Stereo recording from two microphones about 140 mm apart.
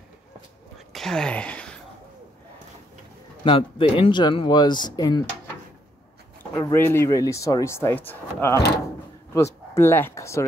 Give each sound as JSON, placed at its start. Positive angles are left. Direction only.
{"t": 0.9, "sound": "a sound", "side_deg": 5}
{"t": 3.4, "sound": "speech", "side_deg": 40}
{"t": 6.6, "sound": "speech", "side_deg": 15}